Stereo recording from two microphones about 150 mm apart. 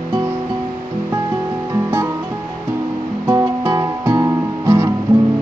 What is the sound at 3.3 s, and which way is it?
Music, 20° right (ahead or behind).